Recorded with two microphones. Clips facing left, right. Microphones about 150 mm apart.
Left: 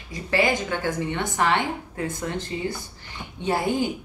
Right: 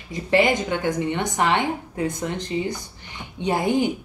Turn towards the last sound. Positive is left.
turn(degrees=-20)  # may be behind; listen again after turning